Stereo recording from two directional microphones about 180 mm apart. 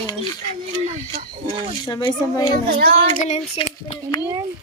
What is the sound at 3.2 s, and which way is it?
Speech, 40° left (ahead or behind).